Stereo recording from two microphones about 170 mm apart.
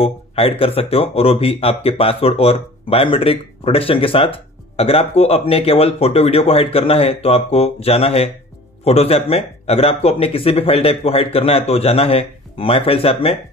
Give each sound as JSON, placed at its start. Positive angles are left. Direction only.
{"t": 0.0, "sound": "speech", "side_deg": 35}